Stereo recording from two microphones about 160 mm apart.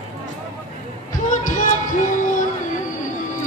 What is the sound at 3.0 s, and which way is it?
Music, 55° left (ahead or behind).